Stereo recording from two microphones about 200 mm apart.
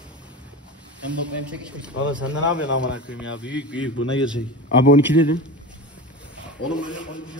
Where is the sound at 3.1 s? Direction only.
65° left (ahead or behind).